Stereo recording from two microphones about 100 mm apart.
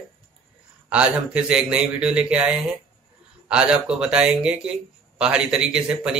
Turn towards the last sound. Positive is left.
turn(degrees=-10)  # may be behind; listen again after turning